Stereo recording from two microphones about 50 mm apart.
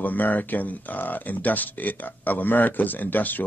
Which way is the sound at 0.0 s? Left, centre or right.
Left.